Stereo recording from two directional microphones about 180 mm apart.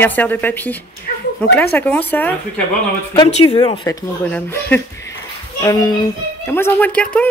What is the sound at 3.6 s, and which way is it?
Speech, 20° left (ahead or behind).